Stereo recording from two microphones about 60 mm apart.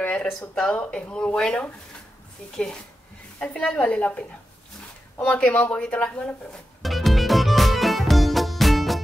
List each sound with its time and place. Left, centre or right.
0.4 s a woman's voice: centre
5.3 s speech: left
6.8 s music: centre